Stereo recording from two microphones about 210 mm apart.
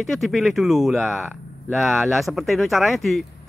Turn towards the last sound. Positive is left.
turn(degrees=0)  # may be behind; listen again after turning